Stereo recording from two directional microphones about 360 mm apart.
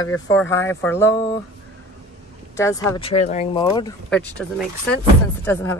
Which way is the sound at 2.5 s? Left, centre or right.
Centre.